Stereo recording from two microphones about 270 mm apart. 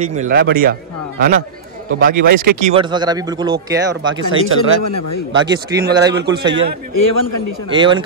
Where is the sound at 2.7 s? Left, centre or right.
Centre.